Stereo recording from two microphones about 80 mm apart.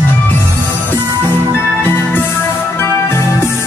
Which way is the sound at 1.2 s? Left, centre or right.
Left.